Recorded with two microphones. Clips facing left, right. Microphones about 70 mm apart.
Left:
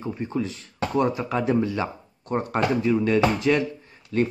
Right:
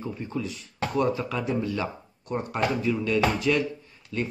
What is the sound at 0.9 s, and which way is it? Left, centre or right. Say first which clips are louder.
Speech: left 3 dB; left.